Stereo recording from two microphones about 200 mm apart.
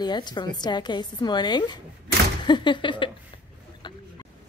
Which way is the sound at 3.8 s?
25° left (ahead or behind).